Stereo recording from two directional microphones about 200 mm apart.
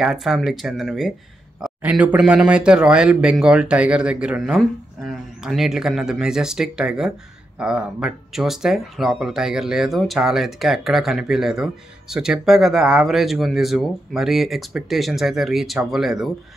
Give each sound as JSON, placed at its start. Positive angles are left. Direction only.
{"t": 0.0, "sound": "a man's voice", "side_deg": 0}